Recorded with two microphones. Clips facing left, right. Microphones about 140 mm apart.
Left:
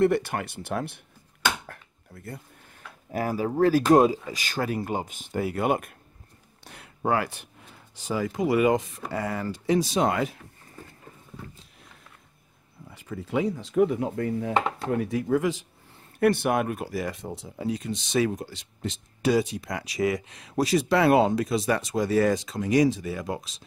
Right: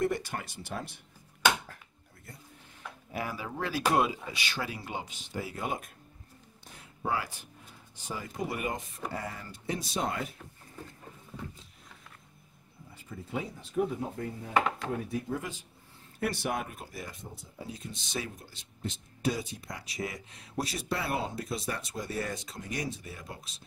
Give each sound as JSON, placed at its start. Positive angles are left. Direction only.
{"t": 0.0, "sound": "speech", "side_deg": 65}
{"t": 2.1, "sound": "speech", "side_deg": 75}
{"t": 3.1, "sound": "speech", "side_deg": 45}
{"t": 12.9, "sound": "speech", "side_deg": 85}
{"t": 16.2, "sound": "speech", "side_deg": 60}